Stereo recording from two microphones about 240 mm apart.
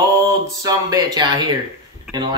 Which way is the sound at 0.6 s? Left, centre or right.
Centre.